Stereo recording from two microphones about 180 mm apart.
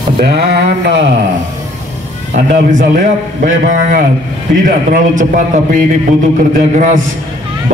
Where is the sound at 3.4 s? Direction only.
45° right (ahead or behind).